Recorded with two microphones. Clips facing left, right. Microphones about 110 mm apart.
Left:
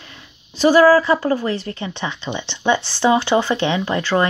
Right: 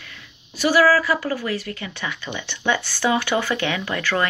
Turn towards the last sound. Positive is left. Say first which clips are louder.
# left 5 dB
turn(degrees=25)  # may be behind; listen again after turning